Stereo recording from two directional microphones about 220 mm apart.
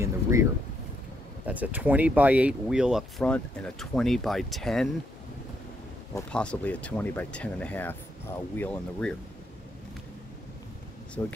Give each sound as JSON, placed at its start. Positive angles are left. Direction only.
{"t": 0.0, "sound": "a sound", "side_deg": -15}
{"t": 1.4, "sound": "speech", "side_deg": -5}
{"t": 6.1, "sound": "speech", "side_deg": 5}
{"t": 11.2, "sound": "speech", "side_deg": 15}